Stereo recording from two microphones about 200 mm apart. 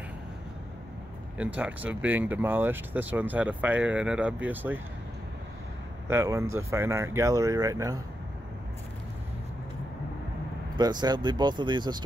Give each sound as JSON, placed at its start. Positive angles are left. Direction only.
{"t": 1.4, "sound": "speech", "side_deg": -5}
{"t": 6.0, "sound": "speech", "side_deg": -15}
{"t": 10.8, "sound": "speech", "side_deg": -20}